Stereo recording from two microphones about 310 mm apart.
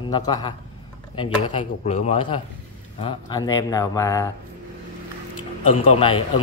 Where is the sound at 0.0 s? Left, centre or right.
Centre.